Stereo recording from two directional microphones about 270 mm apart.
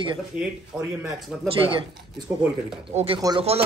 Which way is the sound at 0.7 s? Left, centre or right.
Centre.